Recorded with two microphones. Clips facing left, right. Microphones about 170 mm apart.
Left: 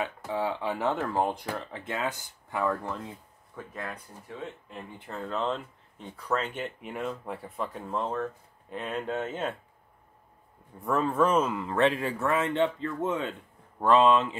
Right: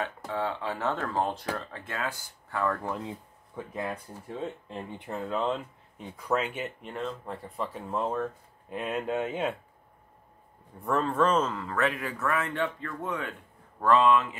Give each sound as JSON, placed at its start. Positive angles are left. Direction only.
{"t": 0.0, "sound": "speech", "side_deg": 15}
{"t": 3.5, "sound": "speech", "side_deg": -20}
{"t": 3.9, "sound": "speech", "side_deg": -30}
{"t": 4.9, "sound": "speech", "side_deg": -20}
{"t": 5.2, "sound": "speech", "side_deg": -5}
{"t": 6.8, "sound": "speech", "side_deg": 5}
{"t": 10.8, "sound": "speech", "side_deg": 0}
{"t": 11.7, "sound": "speech", "side_deg": 30}